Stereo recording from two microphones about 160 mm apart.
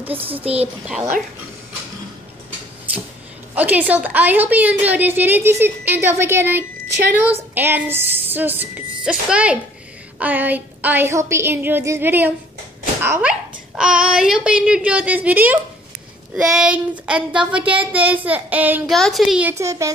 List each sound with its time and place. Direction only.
0.2 s a woman's voice: 10° right (ahead or behind)
3.5 s a woman's voice: 10° right (ahead or behind)
18.9 s speech: centre (ahead or behind)
19.5 s speech: 20° right (ahead or behind)